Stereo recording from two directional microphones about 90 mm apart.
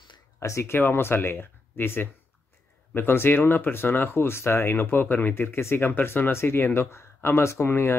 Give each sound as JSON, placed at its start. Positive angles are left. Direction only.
{"t": 0.4, "sound": "speech", "side_deg": 30}